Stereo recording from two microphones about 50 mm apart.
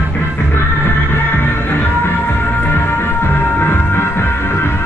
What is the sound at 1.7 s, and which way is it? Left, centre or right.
Music, left.